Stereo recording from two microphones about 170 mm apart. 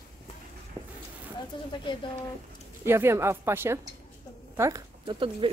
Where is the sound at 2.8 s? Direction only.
15° right (ahead or behind).